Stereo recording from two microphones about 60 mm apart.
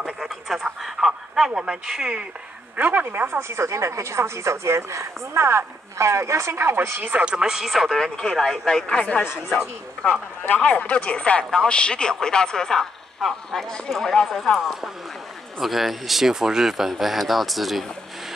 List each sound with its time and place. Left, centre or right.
0.0 s a sound: centre
2.7 s speech: right
3.3 s speech: right
7.1 s speech: centre
10.4 s speech: left; by 17.8 s centre